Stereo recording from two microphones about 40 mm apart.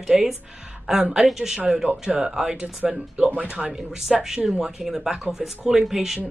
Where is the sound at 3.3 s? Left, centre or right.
Right.